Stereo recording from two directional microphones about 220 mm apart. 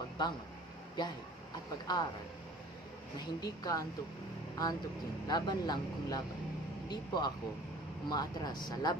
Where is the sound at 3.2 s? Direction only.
15° left (ahead or behind).